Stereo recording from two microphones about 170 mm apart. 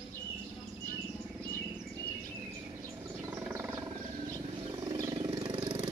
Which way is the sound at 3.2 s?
15° right (ahead or behind).